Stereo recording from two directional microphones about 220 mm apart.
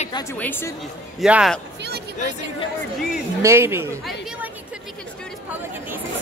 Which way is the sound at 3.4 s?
10° right (ahead or behind).